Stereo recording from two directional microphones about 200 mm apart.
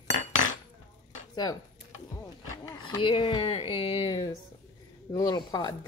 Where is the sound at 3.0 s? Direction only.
25° left (ahead or behind).